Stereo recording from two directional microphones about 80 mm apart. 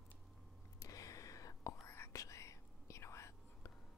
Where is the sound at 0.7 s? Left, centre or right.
Left.